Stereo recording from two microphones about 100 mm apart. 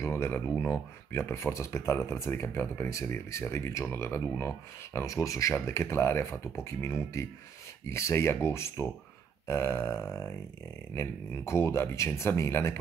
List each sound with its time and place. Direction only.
0.0 s speech: 25° left (ahead or behind)